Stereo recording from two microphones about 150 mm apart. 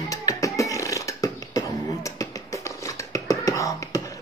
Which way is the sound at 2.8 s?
20° left (ahead or behind).